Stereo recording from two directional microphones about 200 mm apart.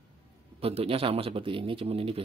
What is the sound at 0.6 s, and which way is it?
Speech, 30° right (ahead or behind).